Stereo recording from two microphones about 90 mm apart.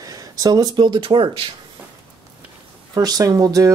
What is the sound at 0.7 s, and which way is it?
Speech, 60° right (ahead or behind).